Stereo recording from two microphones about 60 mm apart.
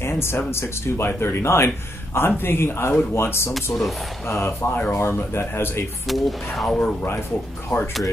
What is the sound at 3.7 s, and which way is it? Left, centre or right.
Speech, centre.